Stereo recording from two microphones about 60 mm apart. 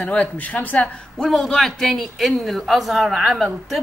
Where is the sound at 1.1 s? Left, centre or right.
Centre.